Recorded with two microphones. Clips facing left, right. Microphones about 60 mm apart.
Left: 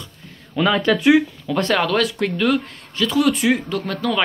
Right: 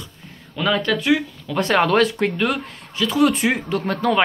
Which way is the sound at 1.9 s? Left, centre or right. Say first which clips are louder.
Right 2 dB; right.